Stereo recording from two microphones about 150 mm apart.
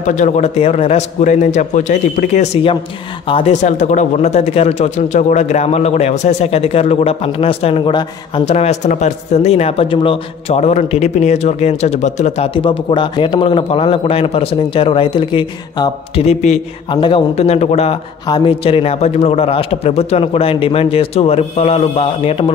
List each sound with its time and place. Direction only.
0.0 s a man's voice: 55° left (ahead or behind); by 3.5 s 35° left (ahead or behind)
3.6 s speech: 55° left (ahead or behind); by 8.5 s 30° left (ahead or behind)
8.5 s speech: 45° left (ahead or behind)
12.9 s a man's voice: 30° left (ahead or behind)
18.2 s a man's voice: 30° left (ahead or behind)